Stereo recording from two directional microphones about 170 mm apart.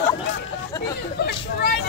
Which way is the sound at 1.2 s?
80° left.